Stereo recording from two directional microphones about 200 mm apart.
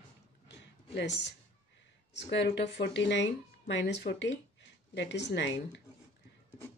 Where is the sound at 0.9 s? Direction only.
60° left (ahead or behind).